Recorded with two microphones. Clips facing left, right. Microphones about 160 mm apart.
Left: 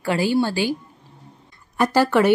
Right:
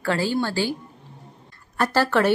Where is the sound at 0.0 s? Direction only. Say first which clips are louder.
Left 3 dB; 15° left (ahead or behind).